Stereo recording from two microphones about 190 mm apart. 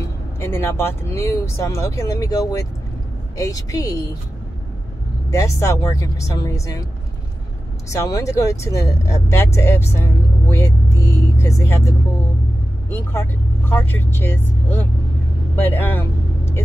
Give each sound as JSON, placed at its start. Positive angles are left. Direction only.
{"t": 0.4, "sound": "speech", "side_deg": 15}
{"t": 5.3, "sound": "speech", "side_deg": 15}
{"t": 7.9, "sound": "speech", "side_deg": 15}
{"t": 13.7, "sound": "speech", "side_deg": 10}
{"t": 15.5, "sound": "vehicle", "side_deg": 10}